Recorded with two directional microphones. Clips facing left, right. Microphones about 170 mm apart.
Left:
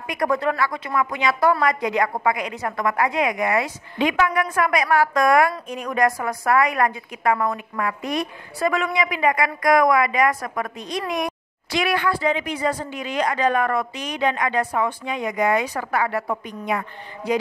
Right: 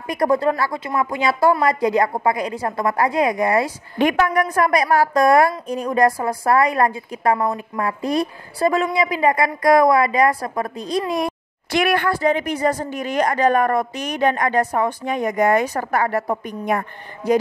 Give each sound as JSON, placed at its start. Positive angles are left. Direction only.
{"t": 0.0, "sound": "a woman's voice", "side_deg": -35}
{"t": 4.0, "sound": "a woman's voice", "side_deg": -45}
{"t": 11.7, "sound": "speech", "side_deg": -50}